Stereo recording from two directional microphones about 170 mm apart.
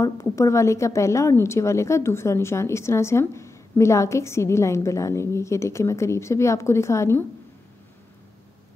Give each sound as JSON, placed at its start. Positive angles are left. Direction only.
{"t": 0.0, "sound": "a woman's voice", "side_deg": 15}